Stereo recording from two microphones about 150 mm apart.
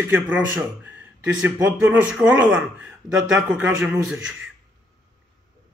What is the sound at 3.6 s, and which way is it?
Speech, 10° right (ahead or behind).